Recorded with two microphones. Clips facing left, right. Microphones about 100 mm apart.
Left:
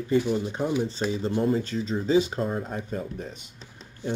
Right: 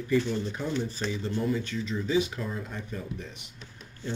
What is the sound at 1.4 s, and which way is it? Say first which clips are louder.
Speech: left 4 dB; 40° left (ahead or behind).